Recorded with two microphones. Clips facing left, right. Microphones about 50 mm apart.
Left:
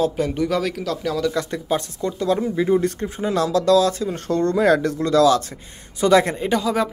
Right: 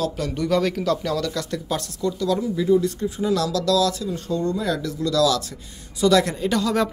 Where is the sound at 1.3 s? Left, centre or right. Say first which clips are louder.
Left 4 dB; left.